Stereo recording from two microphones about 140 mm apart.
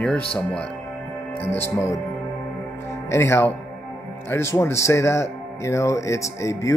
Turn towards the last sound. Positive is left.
turn(degrees=20)  # may be behind; listen again after turning